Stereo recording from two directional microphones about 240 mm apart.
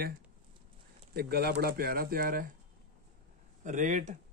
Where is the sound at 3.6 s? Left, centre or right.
Right.